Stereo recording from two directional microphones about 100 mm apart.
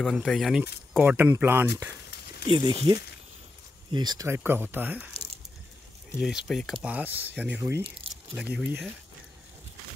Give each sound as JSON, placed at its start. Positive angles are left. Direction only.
{"t": 0.0, "sound": "speech", "side_deg": 0}
{"t": 2.4, "sound": "speech", "side_deg": -55}
{"t": 4.3, "sound": "speech", "side_deg": -20}
{"t": 6.2, "sound": "speech", "side_deg": 0}
{"t": 6.9, "sound": "speech", "side_deg": -15}
{"t": 8.5, "sound": "speech", "side_deg": 0}